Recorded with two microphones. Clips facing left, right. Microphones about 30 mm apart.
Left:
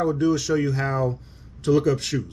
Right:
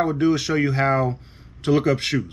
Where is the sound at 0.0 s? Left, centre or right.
Right.